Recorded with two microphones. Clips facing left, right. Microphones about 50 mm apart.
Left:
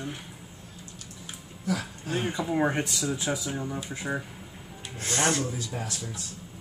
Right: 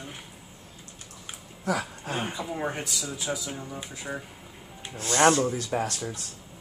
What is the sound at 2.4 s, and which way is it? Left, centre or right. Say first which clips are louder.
Speech: left 5 dB; centre.